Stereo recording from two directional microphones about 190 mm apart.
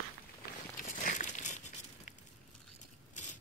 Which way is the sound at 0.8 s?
45° left (ahead or behind).